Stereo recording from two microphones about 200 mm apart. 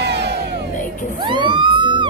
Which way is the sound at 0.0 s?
60° right (ahead or behind).